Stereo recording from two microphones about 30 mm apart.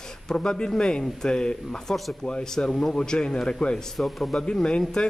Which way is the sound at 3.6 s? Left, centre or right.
Centre.